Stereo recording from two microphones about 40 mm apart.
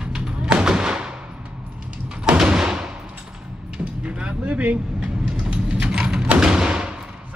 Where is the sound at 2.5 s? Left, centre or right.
Centre.